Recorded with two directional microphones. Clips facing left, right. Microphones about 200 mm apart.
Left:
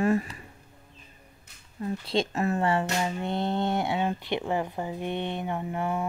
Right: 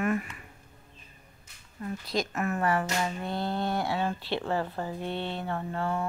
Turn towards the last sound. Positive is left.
turn(degrees=15)  # may be behind; listen again after turning